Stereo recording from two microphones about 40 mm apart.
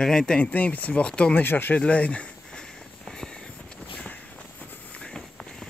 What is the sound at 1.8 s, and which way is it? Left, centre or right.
Speech, left.